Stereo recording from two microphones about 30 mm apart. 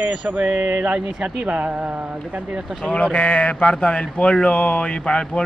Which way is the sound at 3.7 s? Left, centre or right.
Left.